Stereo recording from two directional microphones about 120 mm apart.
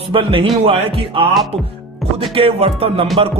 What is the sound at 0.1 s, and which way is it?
Speech, 50° right (ahead or behind).